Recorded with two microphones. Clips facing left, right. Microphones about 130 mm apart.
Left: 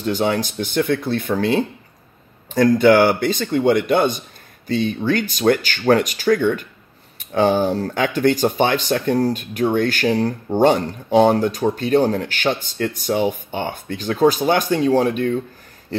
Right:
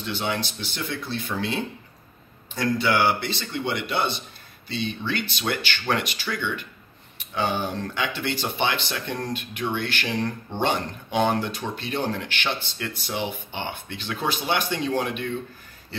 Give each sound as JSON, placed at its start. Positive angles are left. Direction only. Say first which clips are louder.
{"t": 0.0, "sound": "speech", "louder": "left 8 dB", "side_deg": 45}